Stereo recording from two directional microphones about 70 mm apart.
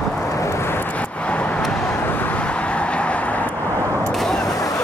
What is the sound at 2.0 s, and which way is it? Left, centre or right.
Vehicle, left.